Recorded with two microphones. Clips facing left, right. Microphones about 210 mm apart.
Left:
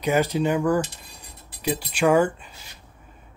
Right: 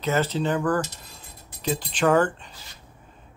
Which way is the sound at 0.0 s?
15° left (ahead or behind).